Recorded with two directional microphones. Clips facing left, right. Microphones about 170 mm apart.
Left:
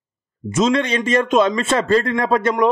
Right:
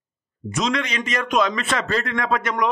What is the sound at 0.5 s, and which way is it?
A man's voice, 30° left (ahead or behind).